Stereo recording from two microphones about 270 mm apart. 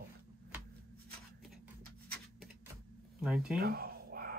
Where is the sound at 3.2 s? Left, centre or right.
Centre.